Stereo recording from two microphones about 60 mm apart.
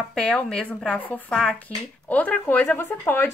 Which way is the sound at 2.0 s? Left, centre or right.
Left.